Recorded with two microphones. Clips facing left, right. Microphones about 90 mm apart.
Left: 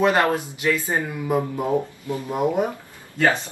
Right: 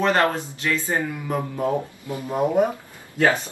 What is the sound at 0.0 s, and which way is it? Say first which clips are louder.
Speech: left 1 dB; 15° left (ahead or behind).